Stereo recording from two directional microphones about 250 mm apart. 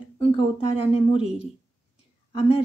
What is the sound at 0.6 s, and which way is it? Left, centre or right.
Speech, left.